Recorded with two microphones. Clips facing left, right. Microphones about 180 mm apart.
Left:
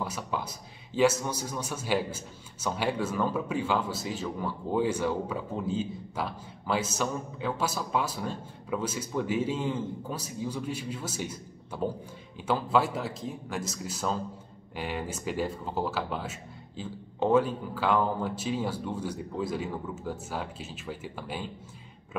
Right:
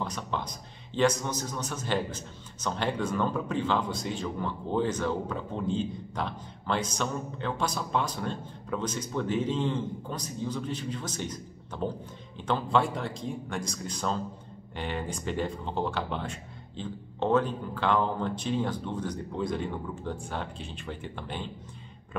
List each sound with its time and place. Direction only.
0.0 s a man's voice: 5° left (ahead or behind)